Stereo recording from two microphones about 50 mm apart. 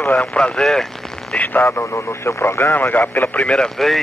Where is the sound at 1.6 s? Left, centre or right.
Left.